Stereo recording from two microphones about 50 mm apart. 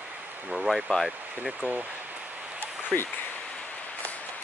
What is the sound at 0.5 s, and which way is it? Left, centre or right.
Speech, centre.